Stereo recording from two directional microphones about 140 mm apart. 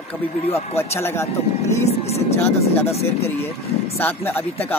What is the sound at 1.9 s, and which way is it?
Speech, 50° left (ahead or behind).